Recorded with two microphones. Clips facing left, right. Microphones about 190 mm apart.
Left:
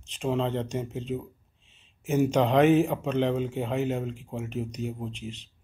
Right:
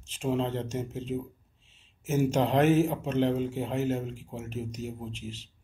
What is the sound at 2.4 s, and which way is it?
Speech, 5° right (ahead or behind).